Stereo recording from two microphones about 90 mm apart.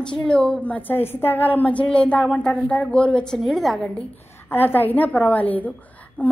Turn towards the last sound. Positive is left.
turn(degrees=20)  # may be behind; listen again after turning